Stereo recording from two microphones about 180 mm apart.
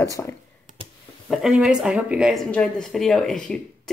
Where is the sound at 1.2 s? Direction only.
Centre (ahead or behind).